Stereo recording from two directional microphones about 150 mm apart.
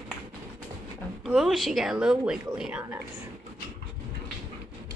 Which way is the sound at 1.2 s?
Centre (ahead or behind).